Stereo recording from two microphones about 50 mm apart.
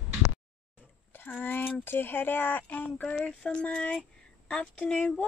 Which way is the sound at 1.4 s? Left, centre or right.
Left.